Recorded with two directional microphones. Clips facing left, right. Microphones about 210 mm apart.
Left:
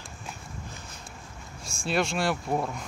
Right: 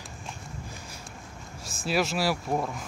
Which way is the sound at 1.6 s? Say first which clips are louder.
Even; 5° right (ahead or behind).